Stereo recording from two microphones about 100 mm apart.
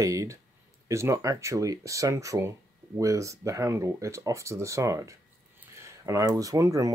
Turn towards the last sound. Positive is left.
turn(degrees=-35)  # may be behind; listen again after turning